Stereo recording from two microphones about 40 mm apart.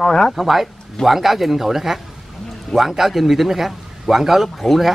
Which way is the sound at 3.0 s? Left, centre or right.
Centre.